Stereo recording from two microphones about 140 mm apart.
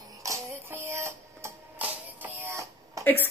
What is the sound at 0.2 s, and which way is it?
Music, 20° right (ahead or behind).